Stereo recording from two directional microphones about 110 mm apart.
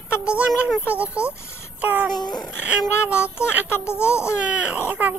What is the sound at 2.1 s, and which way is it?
Speech, 40° left (ahead or behind).